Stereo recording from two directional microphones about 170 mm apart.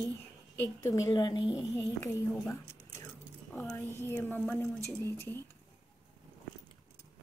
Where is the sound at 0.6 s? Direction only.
20° left (ahead or behind).